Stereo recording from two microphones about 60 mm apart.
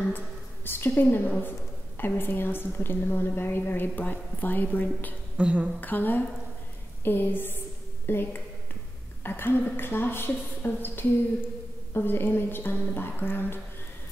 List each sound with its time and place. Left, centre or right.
0.7 s a woman's voice: left
5.4 s a woman's voice: centre
5.8 s a woman's voice: left